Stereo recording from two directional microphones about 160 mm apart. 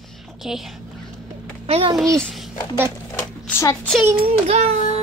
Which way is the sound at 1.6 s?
40° right (ahead or behind).